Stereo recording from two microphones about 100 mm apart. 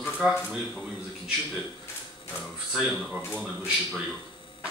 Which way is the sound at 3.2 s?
20° left (ahead or behind).